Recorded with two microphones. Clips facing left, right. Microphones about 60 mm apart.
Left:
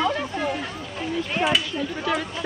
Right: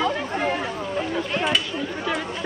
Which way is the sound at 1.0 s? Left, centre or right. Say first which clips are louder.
Left 1 dB; centre.